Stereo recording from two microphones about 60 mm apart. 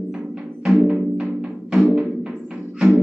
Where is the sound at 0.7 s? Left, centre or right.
Centre.